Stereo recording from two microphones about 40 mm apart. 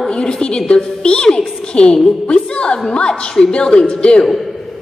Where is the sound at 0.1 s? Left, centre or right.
Left.